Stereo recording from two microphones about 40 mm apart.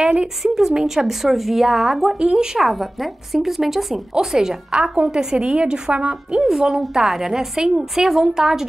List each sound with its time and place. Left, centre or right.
0.4 s speech: centre
2.3 s speech: centre
2.6 s a woman's voice: centre; by 6.1 s right
6.3 s speech: centre